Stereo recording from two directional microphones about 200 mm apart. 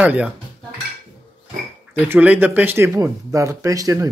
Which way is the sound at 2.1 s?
10° right (ahead or behind).